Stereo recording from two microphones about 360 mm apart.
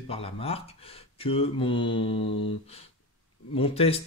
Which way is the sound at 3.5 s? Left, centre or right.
Centre.